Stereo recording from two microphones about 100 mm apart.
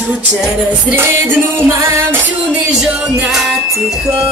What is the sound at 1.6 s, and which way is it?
Music, 25° right (ahead or behind).